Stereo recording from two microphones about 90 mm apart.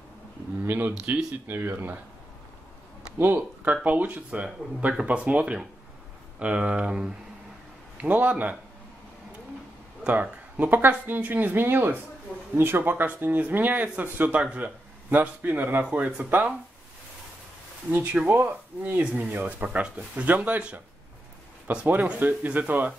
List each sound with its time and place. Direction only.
0.7 s a sound: 20° right (ahead or behind)
1.0 s speech: 25° right (ahead or behind)
3.2 s speech: 20° right (ahead or behind)
10.0 s speech: 15° right (ahead or behind)
17.9 s speech: 20° right (ahead or behind)